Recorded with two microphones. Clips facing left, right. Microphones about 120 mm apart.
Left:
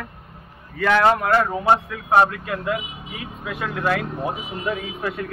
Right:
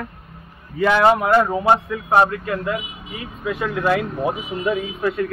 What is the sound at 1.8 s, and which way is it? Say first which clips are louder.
A man's voice: right 1 dB; centre (ahead or behind).